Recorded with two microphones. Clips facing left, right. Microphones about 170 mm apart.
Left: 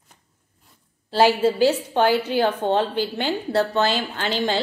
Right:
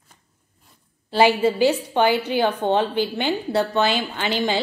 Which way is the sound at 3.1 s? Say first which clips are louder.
Right 1 dB; 10° right (ahead or behind).